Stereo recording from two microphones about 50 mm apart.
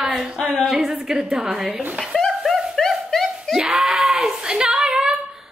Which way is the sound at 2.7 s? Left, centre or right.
Centre.